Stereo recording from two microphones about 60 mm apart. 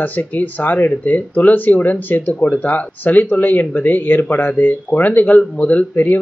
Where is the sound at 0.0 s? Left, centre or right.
Left.